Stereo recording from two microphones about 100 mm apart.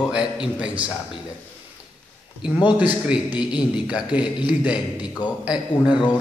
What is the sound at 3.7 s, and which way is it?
Speech, 10° right (ahead or behind).